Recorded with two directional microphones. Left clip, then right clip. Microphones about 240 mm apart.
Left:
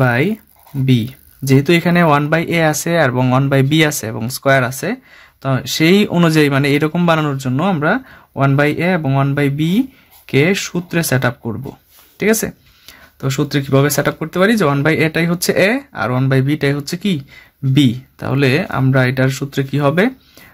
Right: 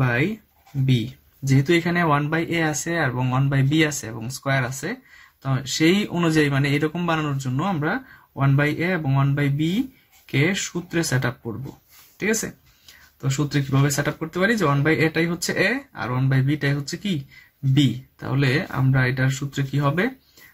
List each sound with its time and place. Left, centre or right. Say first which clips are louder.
0.0 s speech: left 8 dB; left